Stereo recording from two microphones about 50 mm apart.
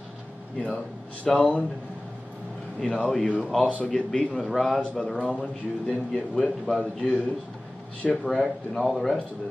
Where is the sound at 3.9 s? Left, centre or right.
Centre.